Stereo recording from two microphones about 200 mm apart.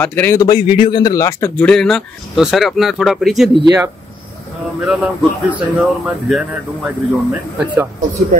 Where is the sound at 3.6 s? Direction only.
15° right (ahead or behind).